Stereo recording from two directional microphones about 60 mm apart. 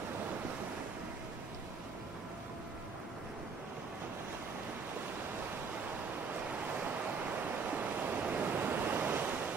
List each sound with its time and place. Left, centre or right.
7.7 s waves: right